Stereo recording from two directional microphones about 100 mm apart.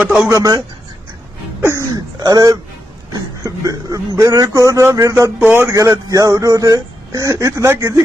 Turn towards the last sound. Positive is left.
turn(degrees=-30)  # may be behind; listen again after turning